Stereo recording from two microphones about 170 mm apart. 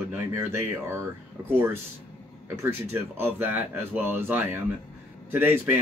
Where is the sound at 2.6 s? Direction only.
10° right (ahead or behind).